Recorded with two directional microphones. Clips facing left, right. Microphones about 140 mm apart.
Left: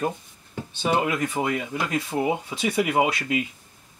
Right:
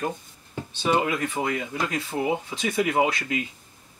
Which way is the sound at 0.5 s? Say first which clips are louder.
Even; 5° left (ahead or behind).